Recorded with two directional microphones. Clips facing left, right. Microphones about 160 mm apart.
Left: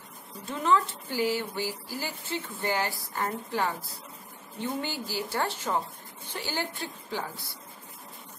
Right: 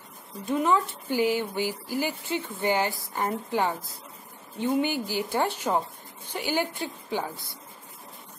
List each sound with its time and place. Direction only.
0.5 s speech: 15° right (ahead or behind)